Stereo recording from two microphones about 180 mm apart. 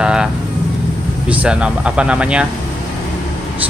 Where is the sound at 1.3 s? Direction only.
5° right (ahead or behind).